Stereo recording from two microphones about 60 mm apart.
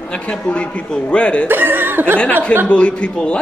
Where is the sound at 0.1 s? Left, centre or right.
Centre.